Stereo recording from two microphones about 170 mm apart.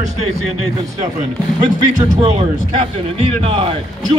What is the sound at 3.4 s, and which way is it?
Speech, 30° right (ahead or behind).